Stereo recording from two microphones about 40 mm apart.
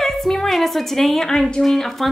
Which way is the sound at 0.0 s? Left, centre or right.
Centre.